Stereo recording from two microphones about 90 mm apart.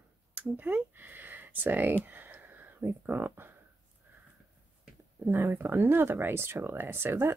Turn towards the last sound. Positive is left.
turn(degrees=-25)  # may be behind; listen again after turning